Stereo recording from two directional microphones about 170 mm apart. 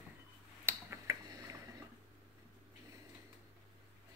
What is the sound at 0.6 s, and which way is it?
Finger snapping, 15° right (ahead or behind).